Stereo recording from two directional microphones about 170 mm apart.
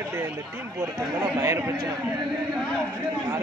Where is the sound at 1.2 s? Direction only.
15° right (ahead or behind).